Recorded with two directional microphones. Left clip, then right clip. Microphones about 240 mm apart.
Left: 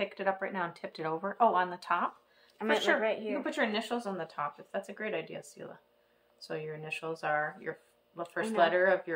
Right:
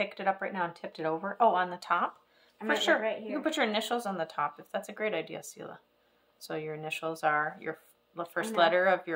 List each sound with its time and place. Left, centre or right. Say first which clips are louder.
0.0 s speech: right 2 dB; centre
3.0 s a woman's voice: left 1 dB; left
3.4 s speech: right 4 dB; right